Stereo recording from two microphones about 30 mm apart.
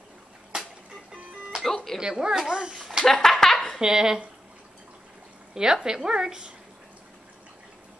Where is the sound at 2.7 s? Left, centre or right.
Centre.